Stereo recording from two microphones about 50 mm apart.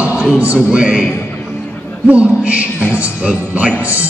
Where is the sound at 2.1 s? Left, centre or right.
Right.